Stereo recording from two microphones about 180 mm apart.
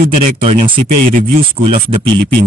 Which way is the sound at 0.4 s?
35° right (ahead or behind).